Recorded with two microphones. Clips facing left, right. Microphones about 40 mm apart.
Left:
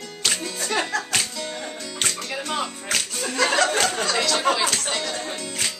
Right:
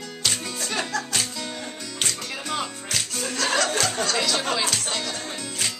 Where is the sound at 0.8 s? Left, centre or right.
Left.